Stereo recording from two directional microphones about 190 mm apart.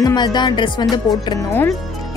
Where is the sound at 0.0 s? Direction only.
20° left (ahead or behind).